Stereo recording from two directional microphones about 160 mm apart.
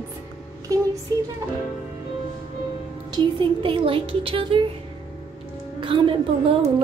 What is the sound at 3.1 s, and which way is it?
Speech, 35° right (ahead or behind).